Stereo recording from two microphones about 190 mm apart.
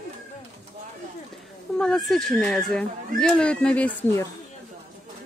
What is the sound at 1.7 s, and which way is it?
Speech, 5° left (ahead or behind).